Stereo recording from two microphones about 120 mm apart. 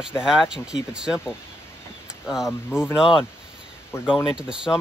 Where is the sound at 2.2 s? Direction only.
5° right (ahead or behind).